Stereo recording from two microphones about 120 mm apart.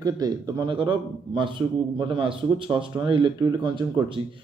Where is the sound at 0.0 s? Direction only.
30° right (ahead or behind).